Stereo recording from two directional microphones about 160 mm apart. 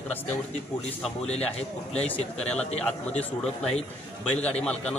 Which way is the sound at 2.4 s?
5° left (ahead or behind).